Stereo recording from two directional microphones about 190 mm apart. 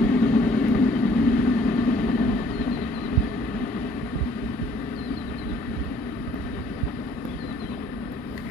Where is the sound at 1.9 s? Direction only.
40° left (ahead or behind).